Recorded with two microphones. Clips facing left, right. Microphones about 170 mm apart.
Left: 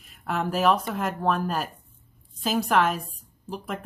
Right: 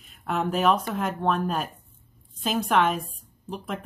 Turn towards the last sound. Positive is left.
turn(degrees=0)  # may be behind; listen again after turning